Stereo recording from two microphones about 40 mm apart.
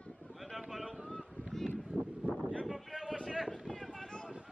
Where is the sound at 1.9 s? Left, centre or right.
Right.